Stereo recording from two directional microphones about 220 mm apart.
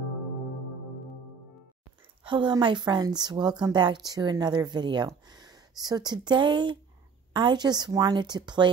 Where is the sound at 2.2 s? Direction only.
20° right (ahead or behind).